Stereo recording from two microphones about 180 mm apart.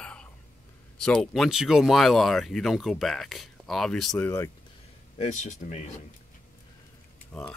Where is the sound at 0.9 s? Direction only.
Centre (ahead or behind).